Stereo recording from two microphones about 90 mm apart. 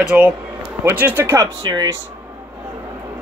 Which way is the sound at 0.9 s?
20° right (ahead or behind).